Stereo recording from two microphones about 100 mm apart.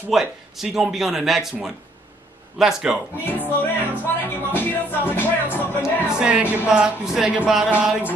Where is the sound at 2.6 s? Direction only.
5° right (ahead or behind).